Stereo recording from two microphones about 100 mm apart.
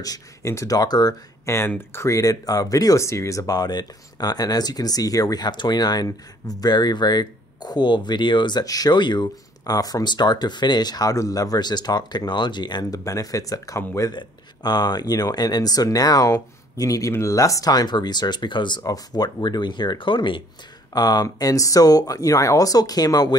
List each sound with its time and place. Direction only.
0.0 s speech: 35° left (ahead or behind)
1.4 s speech: 25° left (ahead or behind); by 13.0 s 45° left (ahead or behind)
13.0 s speech: 35° left (ahead or behind)
14.1 s speech: 45° left (ahead or behind)
18.8 s speech: 40° left (ahead or behind)
20.9 s speech: 45° left (ahead or behind)